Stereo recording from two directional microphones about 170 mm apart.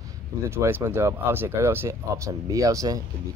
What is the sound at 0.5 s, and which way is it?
Speech, 15° right (ahead or behind).